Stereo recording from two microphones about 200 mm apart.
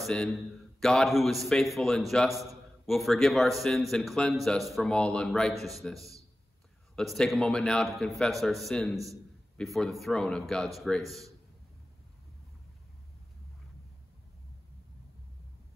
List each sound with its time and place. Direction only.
0.0 s a man's voice: centre (ahead or behind)
8.9 s a man's voice: 15° right (ahead or behind)
9.6 s a man's voice: centre (ahead or behind)